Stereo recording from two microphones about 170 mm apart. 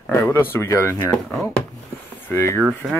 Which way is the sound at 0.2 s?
15° left (ahead or behind).